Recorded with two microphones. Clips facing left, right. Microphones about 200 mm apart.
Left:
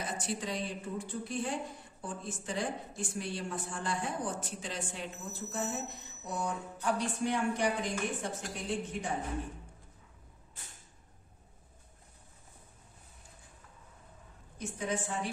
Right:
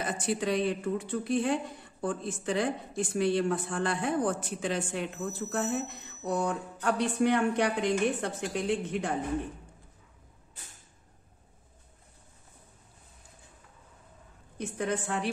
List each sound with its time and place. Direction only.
0.0 s a man's voice: 65° right (ahead or behind)
14.6 s speech: 65° right (ahead or behind)